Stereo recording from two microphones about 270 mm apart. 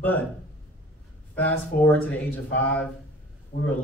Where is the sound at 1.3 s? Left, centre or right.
Centre.